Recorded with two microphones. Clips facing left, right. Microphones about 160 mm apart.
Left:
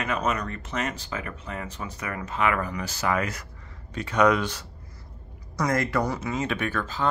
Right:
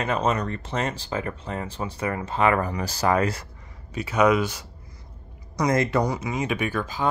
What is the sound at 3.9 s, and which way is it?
Speech, 10° right (ahead or behind).